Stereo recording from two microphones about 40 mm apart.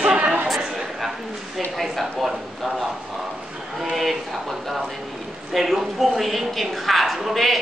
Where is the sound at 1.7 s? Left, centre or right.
Centre.